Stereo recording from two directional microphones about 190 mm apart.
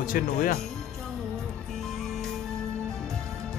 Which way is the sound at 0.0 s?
50° left (ahead or behind).